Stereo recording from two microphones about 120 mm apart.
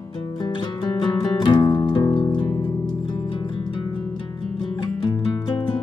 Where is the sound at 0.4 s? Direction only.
35° left (ahead or behind).